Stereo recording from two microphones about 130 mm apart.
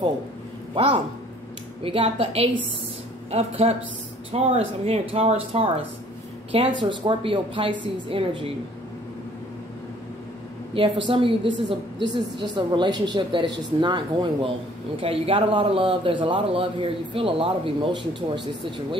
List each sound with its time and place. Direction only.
1.8 s a man's voice: 45° right (ahead or behind)
10.7 s a woman's voice: 40° right (ahead or behind)